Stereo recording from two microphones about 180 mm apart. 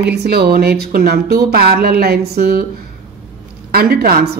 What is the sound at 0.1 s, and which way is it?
Speech, 65° right (ahead or behind).